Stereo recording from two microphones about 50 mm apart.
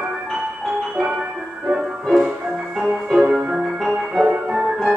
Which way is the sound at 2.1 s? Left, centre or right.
Centre.